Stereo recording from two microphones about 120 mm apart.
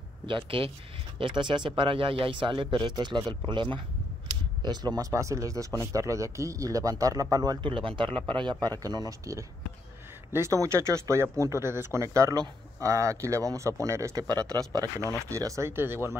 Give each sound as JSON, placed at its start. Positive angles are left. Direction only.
{"t": 0.3, "sound": "speech", "side_deg": -45}